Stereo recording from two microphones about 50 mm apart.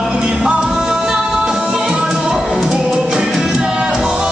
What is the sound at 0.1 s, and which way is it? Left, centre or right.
Music, centre.